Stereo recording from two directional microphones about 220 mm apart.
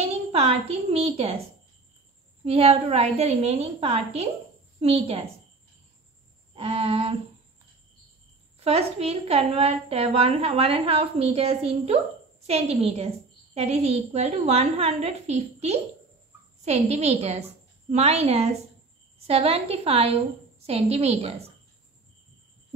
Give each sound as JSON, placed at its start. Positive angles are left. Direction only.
{"t": 0.1, "sound": "a woman's voice", "side_deg": -30}
{"t": 2.4, "sound": "a woman's voice", "side_deg": -25}
{"t": 6.5, "sound": "a woman's voice", "side_deg": -25}
{"t": 8.5, "sound": "a woman's voice", "side_deg": -30}